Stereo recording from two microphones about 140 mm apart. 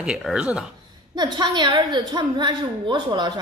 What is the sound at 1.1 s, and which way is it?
A woman's voice, 30° right (ahead or behind).